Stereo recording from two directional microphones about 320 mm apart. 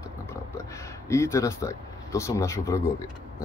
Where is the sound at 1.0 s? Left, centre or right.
Centre.